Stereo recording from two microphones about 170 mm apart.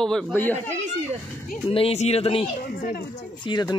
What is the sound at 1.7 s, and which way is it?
Speech, 35° left (ahead or behind).